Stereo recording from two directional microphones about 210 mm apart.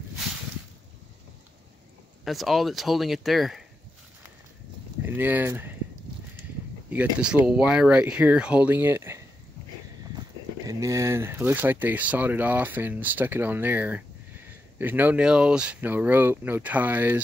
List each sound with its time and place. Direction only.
2.2 s speech: centre (ahead or behind)
5.0 s speech: 10° right (ahead or behind)
6.9 s speech: 5° right (ahead or behind)
10.7 s speech: 15° right (ahead or behind)